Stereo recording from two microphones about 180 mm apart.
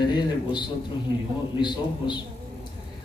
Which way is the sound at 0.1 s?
25° left (ahead or behind).